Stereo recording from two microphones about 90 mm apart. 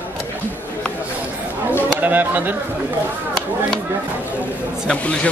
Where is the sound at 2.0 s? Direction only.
20° right (ahead or behind).